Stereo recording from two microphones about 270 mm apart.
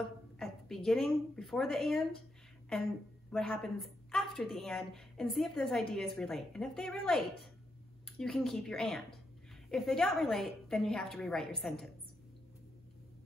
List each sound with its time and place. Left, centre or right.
0.4 s a woman's voice: centre